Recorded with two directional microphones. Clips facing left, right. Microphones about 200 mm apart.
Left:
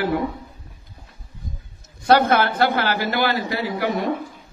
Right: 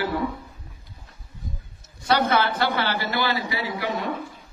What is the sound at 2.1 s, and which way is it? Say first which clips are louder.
A man's voice: left 5 dB; 55° left (ahead or behind).